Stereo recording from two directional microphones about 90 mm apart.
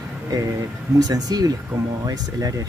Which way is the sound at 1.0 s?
45° right (ahead or behind).